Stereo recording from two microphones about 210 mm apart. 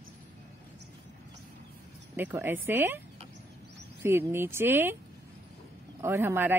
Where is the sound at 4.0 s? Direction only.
10° right (ahead or behind).